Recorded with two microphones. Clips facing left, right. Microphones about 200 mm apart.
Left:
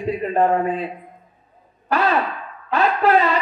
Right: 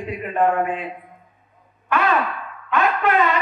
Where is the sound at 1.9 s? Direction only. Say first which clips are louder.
Left 1 dB; 35° left (ahead or behind).